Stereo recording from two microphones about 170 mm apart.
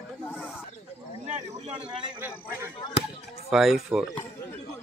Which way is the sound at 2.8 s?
35° left (ahead or behind).